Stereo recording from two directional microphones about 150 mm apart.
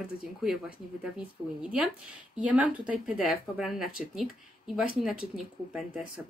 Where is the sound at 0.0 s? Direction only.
5° right (ahead or behind).